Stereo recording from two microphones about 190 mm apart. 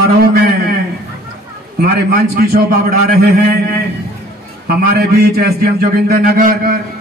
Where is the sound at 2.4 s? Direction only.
50° right (ahead or behind).